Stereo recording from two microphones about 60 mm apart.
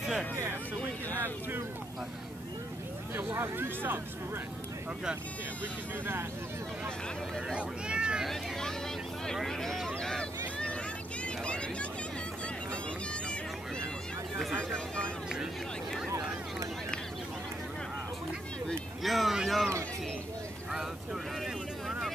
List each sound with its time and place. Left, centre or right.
3.2 s speech: right
7.5 s speech: centre
8.3 s vehicle: centre
11.2 s vehicle: centre
14.6 s vehicle: centre
19.0 s a sound: centre